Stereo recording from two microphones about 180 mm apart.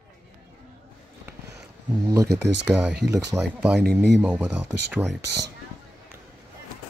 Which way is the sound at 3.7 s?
70° right (ahead or behind).